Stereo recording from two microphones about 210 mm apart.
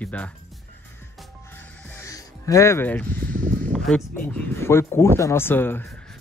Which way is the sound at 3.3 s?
40° right (ahead or behind).